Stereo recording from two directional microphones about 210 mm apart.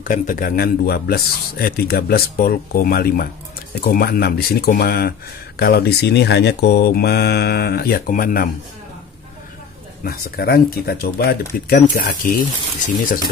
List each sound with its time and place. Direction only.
0.0 s speech: 40° left (ahead or behind)
10.0 s speech: 50° left (ahead or behind)